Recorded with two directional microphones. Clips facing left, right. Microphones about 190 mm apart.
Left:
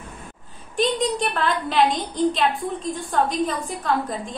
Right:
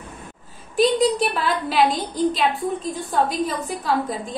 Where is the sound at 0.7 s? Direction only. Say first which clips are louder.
Right 4 dB; 5° right (ahead or behind).